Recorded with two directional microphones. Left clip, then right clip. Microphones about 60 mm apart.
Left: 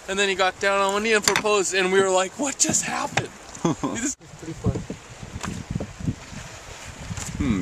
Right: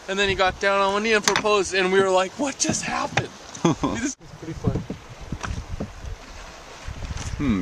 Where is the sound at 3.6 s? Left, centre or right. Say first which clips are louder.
Right 3 dB; right.